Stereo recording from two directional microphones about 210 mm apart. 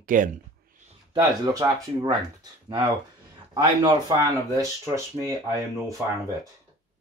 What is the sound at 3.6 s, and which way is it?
Speech, 20° right (ahead or behind).